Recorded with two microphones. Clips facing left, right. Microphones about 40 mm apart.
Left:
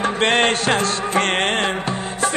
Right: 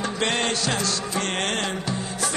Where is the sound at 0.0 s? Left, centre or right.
Left.